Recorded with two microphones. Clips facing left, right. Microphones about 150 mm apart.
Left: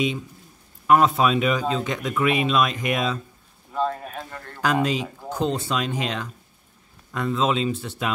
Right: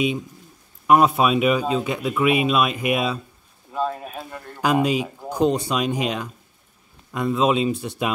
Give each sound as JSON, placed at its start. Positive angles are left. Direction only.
{"t": 0.8, "sound": "a man's voice", "side_deg": -15}